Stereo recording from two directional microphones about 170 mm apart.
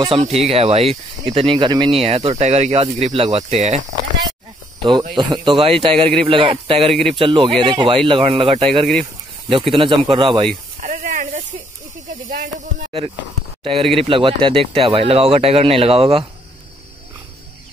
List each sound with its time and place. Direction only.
0.0 s speech: 35° right (ahead or behind)
5.1 s speech: 25° right (ahead or behind)
10.8 s a sound: 50° right (ahead or behind)
12.1 s speech: 50° right (ahead or behind)
13.7 s speech: 35° right (ahead or behind)